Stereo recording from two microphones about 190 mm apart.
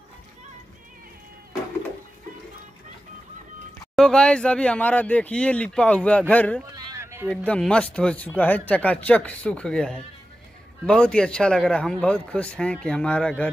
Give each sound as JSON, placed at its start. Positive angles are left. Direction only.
{"t": 3.9, "sound": "speech", "side_deg": 5}
{"t": 6.7, "sound": "a sound", "side_deg": -15}
{"t": 7.4, "sound": "a man's voice", "side_deg": 5}